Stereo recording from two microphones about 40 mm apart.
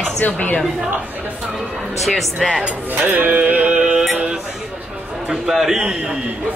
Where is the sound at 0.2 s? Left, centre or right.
Left.